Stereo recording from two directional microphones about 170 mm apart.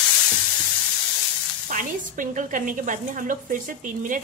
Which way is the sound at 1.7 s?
50° right (ahead or behind).